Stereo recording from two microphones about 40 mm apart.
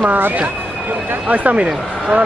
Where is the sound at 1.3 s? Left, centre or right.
Right.